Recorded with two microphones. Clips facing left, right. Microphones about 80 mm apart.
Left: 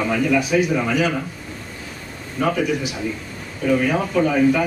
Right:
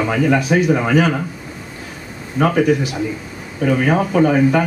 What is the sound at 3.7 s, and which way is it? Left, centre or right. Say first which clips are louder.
Speech: right 3 dB; right.